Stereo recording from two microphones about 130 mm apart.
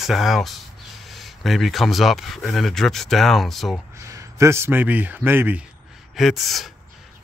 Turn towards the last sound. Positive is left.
turn(degrees=0)  # may be behind; listen again after turning